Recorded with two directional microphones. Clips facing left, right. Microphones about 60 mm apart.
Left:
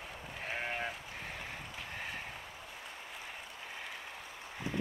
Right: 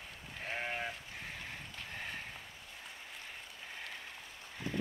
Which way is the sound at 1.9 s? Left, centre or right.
Centre.